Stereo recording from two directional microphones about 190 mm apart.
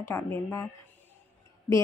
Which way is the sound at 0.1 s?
15° left (ahead or behind).